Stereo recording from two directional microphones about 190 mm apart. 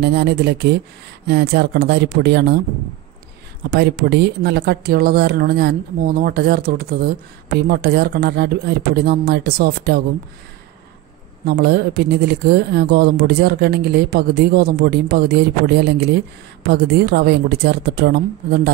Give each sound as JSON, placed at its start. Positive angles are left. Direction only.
{"t": 0.0, "sound": "speech", "side_deg": -60}
{"t": 3.7, "sound": "speech", "side_deg": -60}
{"t": 11.4, "sound": "speech", "side_deg": -55}